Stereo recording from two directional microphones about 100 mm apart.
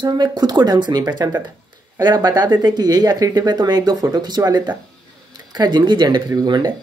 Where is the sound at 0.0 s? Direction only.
45° right (ahead or behind).